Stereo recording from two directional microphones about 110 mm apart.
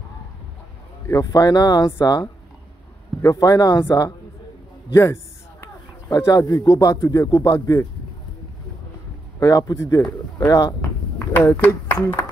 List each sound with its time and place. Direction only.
1.0 s speech: 25° left (ahead or behind)
3.2 s speech: 30° left (ahead or behind)
4.9 s a sound: 25° left (ahead or behind)
6.1 s speech: 30° left (ahead or behind)
9.4 s speech: 30° left (ahead or behind)
11.3 s speech: 15° left (ahead or behind)